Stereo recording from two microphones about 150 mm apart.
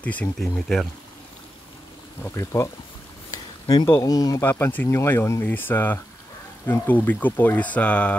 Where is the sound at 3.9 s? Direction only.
20° left (ahead or behind).